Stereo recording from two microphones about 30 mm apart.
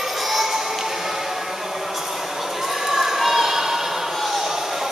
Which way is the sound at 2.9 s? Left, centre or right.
Centre.